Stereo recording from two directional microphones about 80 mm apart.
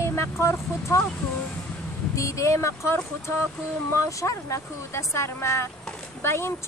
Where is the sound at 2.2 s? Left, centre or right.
Left.